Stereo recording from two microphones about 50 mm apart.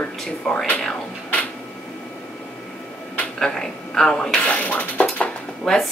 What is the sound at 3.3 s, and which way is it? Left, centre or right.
A woman's voice, centre.